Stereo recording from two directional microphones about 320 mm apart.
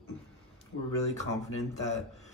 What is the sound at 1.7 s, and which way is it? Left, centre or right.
Speech, left.